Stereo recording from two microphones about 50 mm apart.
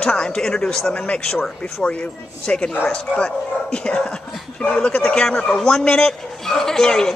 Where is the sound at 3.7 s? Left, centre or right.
Centre.